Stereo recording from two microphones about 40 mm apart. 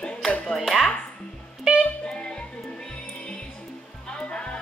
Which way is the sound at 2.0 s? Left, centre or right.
Left.